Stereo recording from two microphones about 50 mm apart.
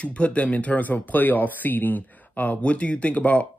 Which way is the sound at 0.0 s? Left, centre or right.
Left.